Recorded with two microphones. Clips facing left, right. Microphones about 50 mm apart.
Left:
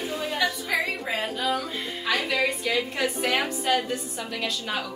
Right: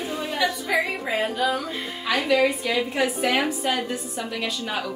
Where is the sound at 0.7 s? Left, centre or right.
Centre.